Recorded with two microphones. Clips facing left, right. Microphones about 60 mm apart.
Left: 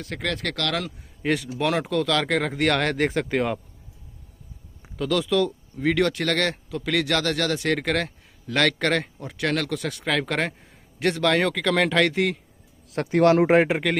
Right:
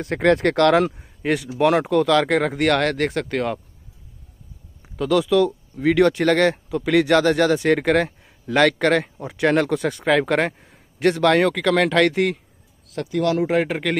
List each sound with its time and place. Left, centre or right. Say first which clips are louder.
0.0 s speech: right 11 dB; right
1.2 s speech: right 5 dB; centre
4.9 s speech: right 5 dB; centre
9.2 s speech: right 7 dB; centre
10.1 s speech: right 6 dB; centre
12.9 s speech: left 3 dB; left